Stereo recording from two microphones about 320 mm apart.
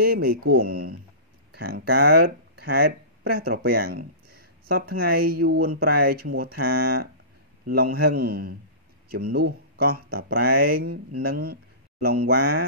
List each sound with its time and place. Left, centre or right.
0.0 s speech: right